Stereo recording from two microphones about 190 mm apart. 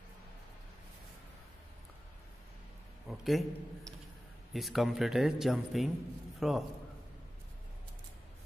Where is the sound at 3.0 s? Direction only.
Centre (ahead or behind).